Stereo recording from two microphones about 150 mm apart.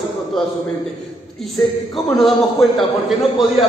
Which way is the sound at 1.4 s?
Centre (ahead or behind).